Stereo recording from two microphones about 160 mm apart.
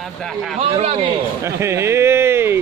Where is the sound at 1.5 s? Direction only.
15° right (ahead or behind).